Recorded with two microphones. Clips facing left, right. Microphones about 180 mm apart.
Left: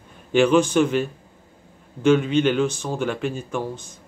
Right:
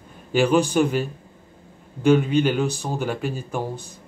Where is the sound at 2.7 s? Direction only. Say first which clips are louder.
Left 1 dB; 40° right (ahead or behind).